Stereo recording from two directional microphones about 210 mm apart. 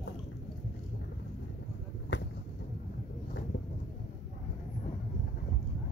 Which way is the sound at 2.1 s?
60° left (ahead or behind).